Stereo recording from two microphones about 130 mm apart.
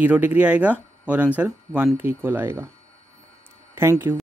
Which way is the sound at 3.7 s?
20° right (ahead or behind).